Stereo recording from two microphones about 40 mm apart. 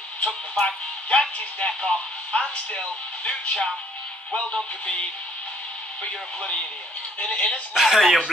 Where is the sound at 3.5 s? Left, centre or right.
Centre.